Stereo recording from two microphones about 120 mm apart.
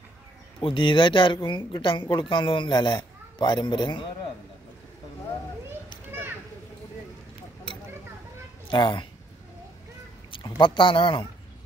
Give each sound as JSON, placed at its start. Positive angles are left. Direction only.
{"t": 0.6, "sound": "speech", "side_deg": 45}
{"t": 6.1, "sound": "children playing", "side_deg": -20}
{"t": 8.6, "sound": "speech", "side_deg": 40}
{"t": 10.3, "sound": "speech", "side_deg": 40}